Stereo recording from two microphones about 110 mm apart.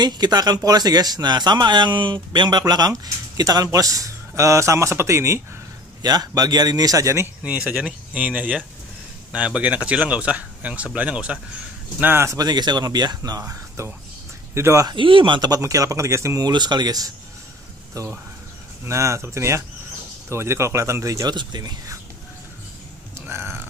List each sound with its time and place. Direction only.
0.0 s speech: 40° right (ahead or behind)
6.0 s speech: 35° right (ahead or behind)
7.4 s speech: 10° right (ahead or behind)
12.0 s speech: 20° right (ahead or behind)
12.4 s speech: 40° right (ahead or behind)
13.4 s speech: 25° right (ahead or behind)
14.9 s speech: 50° right (ahead or behind)
15.6 s speech: 30° right (ahead or behind)
16.4 s speech: 40° right (ahead or behind)
17.9 s speech: 25° right (ahead or behind)
23.1 s a sound: 20° right (ahead or behind)